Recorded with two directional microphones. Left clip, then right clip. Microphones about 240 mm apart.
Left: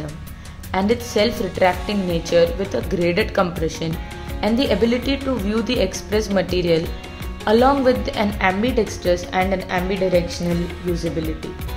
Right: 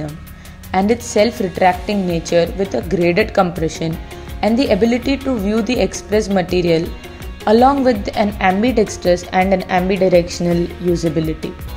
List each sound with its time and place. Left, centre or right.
0.7 s a woman's voice: centre